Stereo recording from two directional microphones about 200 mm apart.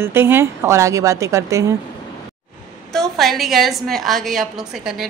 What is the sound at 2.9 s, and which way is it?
A woman's voice, centre (ahead or behind).